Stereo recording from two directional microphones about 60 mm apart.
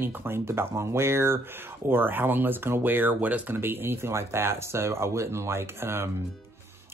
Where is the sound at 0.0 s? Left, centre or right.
Right.